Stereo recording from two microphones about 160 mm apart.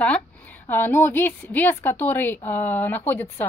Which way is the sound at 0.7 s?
10° left (ahead or behind).